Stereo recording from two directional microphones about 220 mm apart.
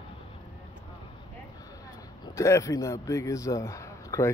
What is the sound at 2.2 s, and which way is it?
Speech, 15° left (ahead or behind).